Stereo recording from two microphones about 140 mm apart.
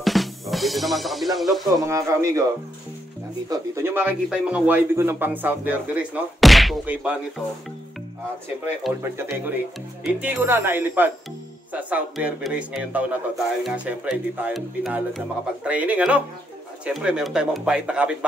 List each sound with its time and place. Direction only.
0.0 s music: centre (ahead or behind)
1.8 s a man's voice: 20° right (ahead or behind)
3.4 s speech: 20° right (ahead or behind)
6.4 s a sound: centre (ahead or behind)
6.9 s speech: 10° right (ahead or behind)
9.0 s speech: 15° right (ahead or behind)